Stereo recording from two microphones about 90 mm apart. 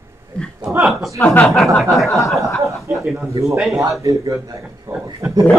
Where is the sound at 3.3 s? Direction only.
35° right (ahead or behind).